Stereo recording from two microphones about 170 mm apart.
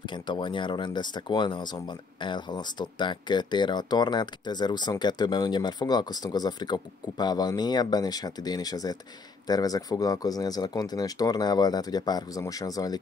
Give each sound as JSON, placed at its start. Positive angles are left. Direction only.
{"t": 0.0, "sound": "speech", "side_deg": 25}